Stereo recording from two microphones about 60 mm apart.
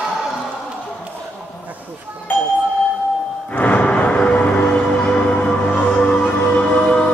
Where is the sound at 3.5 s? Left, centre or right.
Left.